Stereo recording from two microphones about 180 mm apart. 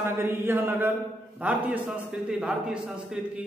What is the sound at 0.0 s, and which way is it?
A man's voice, 15° right (ahead or behind).